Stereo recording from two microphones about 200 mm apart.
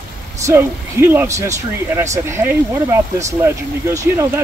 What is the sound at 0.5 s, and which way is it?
Speech, 15° right (ahead or behind).